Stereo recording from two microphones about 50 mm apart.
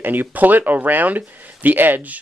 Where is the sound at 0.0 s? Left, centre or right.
Right.